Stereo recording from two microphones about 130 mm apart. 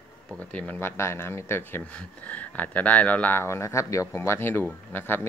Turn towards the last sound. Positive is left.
turn(degrees=15)  # may be behind; listen again after turning